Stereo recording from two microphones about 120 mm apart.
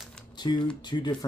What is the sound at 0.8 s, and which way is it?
Speech, 40° left (ahead or behind).